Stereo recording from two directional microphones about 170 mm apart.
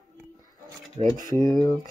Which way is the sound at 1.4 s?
20° left (ahead or behind).